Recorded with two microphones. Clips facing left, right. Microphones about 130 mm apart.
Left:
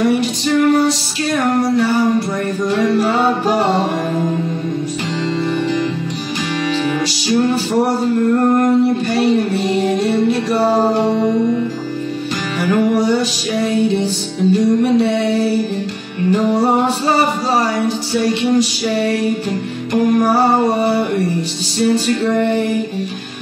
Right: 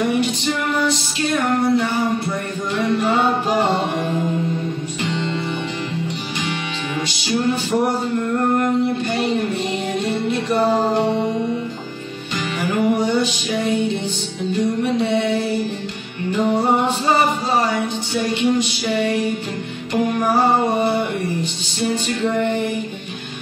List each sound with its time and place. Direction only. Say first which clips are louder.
0.0 s music: left 4 dB; 35° left (ahead or behind)
7.2 s music: left 4 dB; 35° left (ahead or behind)
12.6 s music: left 4 dB; 40° left (ahead or behind)